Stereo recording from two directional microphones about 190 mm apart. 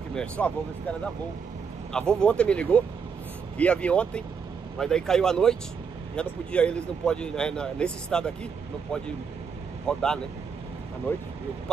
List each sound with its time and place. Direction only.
0.1 s speech: 5° left (ahead or behind)
9.8 s speech: 5° left (ahead or behind)